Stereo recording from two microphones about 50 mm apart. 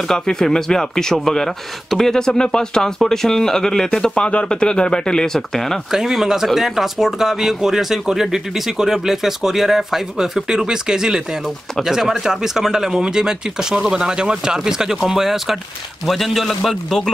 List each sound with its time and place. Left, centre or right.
0.1 s speech: centre
5.9 s a man's voice: centre